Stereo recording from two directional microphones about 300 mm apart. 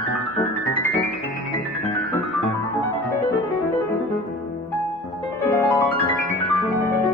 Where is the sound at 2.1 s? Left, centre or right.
Centre.